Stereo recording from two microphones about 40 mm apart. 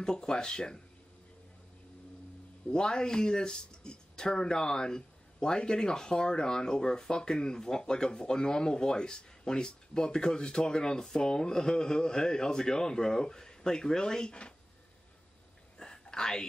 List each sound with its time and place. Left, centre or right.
0.0 s speech: centre
2.7 s speech: left
15.8 s a sound: centre